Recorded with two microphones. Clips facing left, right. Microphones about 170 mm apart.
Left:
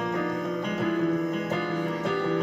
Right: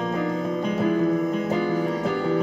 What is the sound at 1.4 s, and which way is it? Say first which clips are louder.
Music: right 5 dB; 30° right (ahead or behind).